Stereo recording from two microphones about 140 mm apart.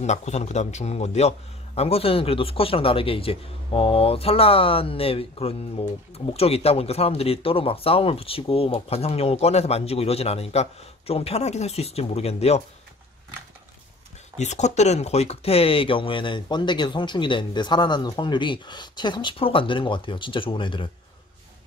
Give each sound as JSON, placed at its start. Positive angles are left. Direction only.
{"t": 0.0, "sound": "a man's voice", "side_deg": 55}
{"t": 14.4, "sound": "speech", "side_deg": 55}